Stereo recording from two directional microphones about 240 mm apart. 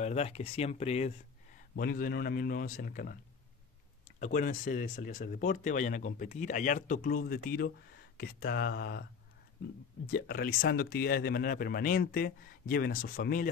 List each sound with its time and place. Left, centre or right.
0.0 s speech: left
1.8 s speech: left
4.2 s speech: left
10.1 s speech: left